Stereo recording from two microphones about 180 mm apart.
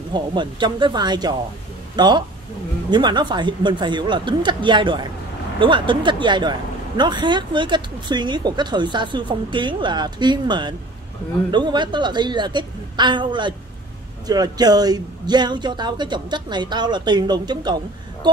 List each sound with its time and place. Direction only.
0.1 s speech: 25° right (ahead or behind)